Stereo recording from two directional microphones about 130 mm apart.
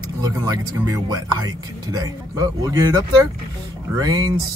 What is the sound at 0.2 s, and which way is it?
Speech, 30° right (ahead or behind).